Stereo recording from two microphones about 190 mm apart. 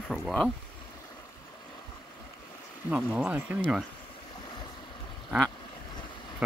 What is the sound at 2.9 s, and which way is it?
Speech, 5° right (ahead or behind).